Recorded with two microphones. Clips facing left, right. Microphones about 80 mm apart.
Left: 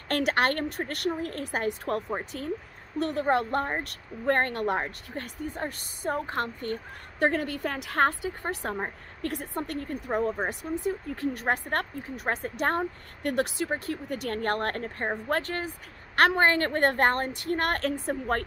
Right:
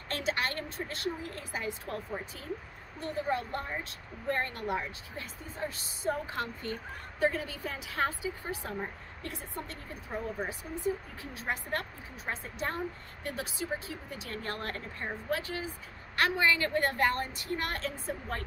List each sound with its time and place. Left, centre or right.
0.1 s a woman's voice: left
2.1 s speech: left
3.0 s a woman's voice: left